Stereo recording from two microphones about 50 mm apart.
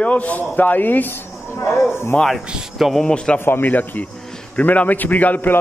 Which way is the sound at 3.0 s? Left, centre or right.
Centre.